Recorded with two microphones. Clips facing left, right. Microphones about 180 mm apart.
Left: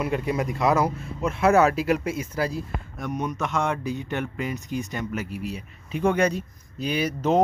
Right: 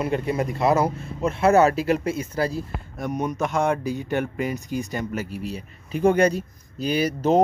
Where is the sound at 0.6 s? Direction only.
30° right (ahead or behind).